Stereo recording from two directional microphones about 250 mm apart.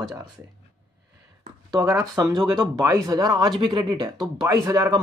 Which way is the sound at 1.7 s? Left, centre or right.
Centre.